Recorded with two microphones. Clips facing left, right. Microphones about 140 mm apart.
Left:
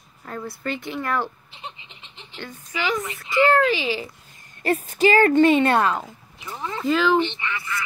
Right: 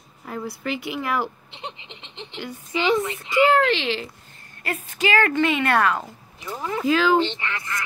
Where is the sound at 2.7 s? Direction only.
25° right (ahead or behind).